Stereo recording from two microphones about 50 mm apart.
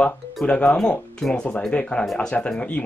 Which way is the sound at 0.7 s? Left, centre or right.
Centre.